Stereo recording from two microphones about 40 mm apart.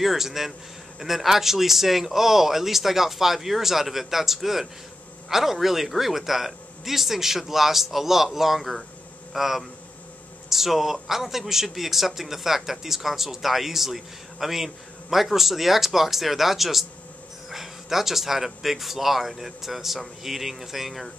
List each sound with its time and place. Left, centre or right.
0.0 s a man's voice: centre